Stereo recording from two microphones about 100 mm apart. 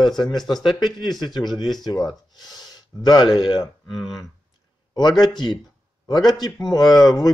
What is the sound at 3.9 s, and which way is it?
Speech, centre (ahead or behind).